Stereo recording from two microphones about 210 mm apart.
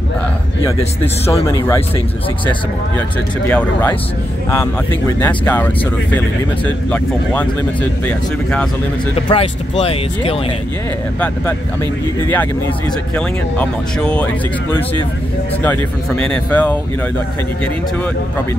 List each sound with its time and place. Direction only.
1.2 s speech: 15° left (ahead or behind)
3.4 s speech: 10° left (ahead or behind)
6.9 s speech: 5° left (ahead or behind)
9.3 s speech: 25° left (ahead or behind)
13.1 s speech: 5° left (ahead or behind)